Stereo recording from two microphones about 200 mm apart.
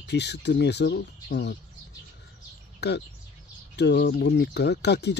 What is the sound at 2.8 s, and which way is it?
Speech, 55° left (ahead or behind).